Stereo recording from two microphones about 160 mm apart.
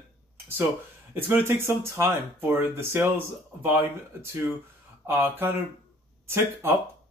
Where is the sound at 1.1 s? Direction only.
10° right (ahead or behind).